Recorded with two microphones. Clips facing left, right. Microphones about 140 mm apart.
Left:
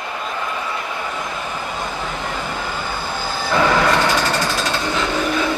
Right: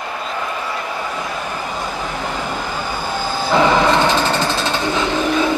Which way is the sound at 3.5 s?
20° right (ahead or behind).